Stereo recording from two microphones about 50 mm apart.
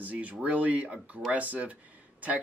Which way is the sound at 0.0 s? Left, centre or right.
Right.